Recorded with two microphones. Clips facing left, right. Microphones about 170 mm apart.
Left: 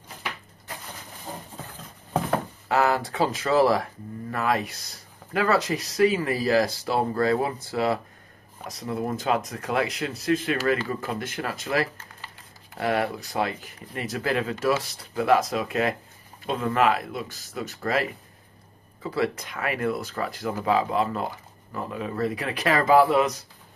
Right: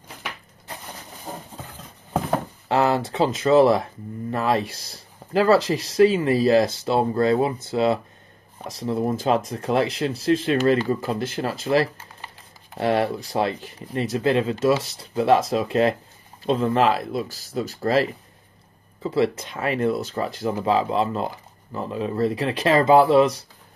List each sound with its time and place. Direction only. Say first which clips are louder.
2.7 s speech: right 2 dB; 25° right (ahead or behind)
19.0 s speech: right 5 dB; 25° right (ahead or behind)